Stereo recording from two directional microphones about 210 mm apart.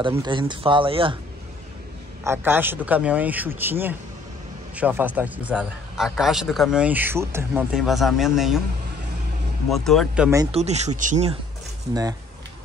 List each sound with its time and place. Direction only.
0.1 s speech: 20° right (ahead or behind)
2.2 s a man's voice: 10° right (ahead or behind)
9.7 s a man's voice: centre (ahead or behind)
10.5 s speech: 30° right (ahead or behind)
11.9 s a man's voice: 20° right (ahead or behind)